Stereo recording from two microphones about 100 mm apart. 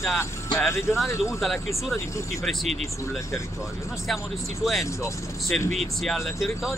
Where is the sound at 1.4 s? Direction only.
Centre (ahead or behind).